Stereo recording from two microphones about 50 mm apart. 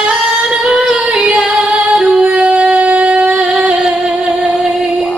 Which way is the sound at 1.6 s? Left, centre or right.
Centre.